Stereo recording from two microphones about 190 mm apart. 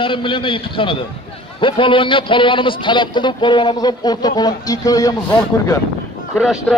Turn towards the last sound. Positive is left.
turn(degrees=0)  # may be behind; listen again after turning